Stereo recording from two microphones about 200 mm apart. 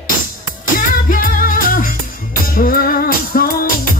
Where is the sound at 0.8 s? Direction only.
45° left (ahead or behind).